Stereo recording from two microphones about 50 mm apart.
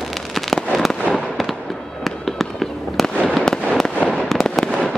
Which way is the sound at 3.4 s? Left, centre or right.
Centre.